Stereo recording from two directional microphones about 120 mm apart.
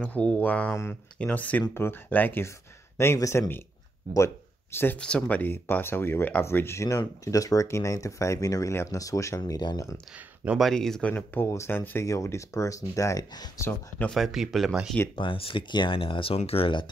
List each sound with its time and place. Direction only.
0.0 s speech: 10° left (ahead or behind); by 9.9 s 30° left (ahead or behind)
10.1 s speech: 10° right (ahead or behind)
10.6 s speech: 5° left (ahead or behind); by 13.5 s 30° left (ahead or behind)
13.6 s speech: 15° left (ahead or behind)
14.1 s speech: centre (ahead or behind)
15.1 s speech: 45° left (ahead or behind)